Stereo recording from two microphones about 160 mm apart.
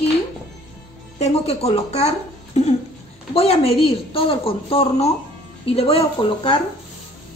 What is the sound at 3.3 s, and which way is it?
A woman's voice, 40° left (ahead or behind).